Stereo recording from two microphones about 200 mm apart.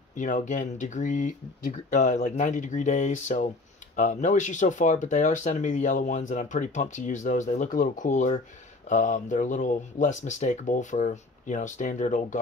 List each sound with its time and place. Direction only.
0.1 s speech: 40° left (ahead or behind)